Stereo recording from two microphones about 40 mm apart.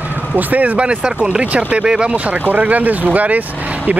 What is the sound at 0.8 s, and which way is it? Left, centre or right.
Speech, right.